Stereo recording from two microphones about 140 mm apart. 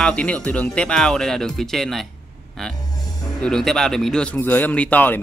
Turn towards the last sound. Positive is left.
turn(degrees=10)  # may be behind; listen again after turning